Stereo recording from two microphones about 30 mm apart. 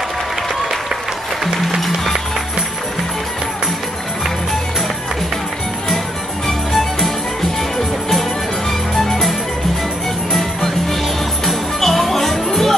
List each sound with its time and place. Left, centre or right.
6.4 s music: centre
8.1 s music: centre
10.3 s music: centre